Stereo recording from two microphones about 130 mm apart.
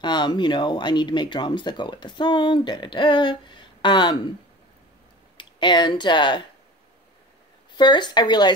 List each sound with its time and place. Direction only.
0.0 s speech: 35° left (ahead or behind)
5.4 s speech: 35° left (ahead or behind)
7.7 s speech: 35° left (ahead or behind)